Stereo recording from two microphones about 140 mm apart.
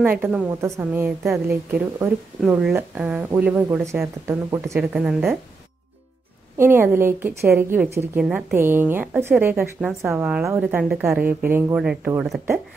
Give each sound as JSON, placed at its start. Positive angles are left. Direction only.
{"t": 0.0, "sound": "a woman's voice", "side_deg": -15}
{"t": 4.3, "sound": "speech", "side_deg": -20}
{"t": 4.7, "sound": "a woman's voice", "side_deg": -10}
{"t": 6.6, "sound": "a woman's voice", "side_deg": -15}